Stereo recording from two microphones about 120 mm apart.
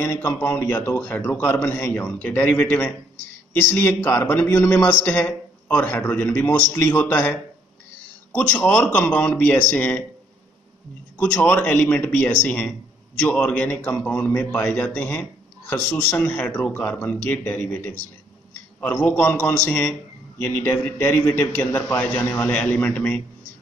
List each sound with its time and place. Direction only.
0.0 s a man's voice: 20° left (ahead or behind)
11.1 s a man's voice: 10° left (ahead or behind)